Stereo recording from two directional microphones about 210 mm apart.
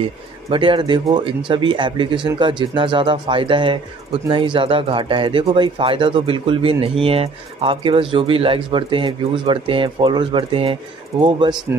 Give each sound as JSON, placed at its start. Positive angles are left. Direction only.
{"t": 0.0, "sound": "speech", "side_deg": -25}